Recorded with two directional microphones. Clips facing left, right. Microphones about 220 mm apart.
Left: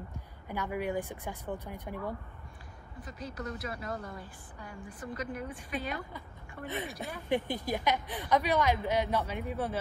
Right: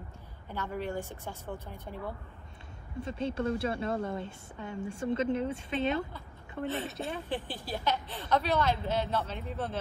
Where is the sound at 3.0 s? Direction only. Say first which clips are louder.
Right 9 dB; 25° right (ahead or behind).